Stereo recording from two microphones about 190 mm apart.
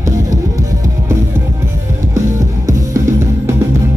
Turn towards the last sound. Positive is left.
turn(degrees=-15)  # may be behind; listen again after turning